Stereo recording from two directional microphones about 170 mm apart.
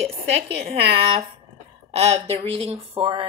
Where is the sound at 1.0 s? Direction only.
35° right (ahead or behind).